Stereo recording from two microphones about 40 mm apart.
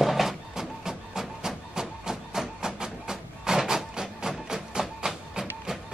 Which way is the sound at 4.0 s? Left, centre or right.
Centre.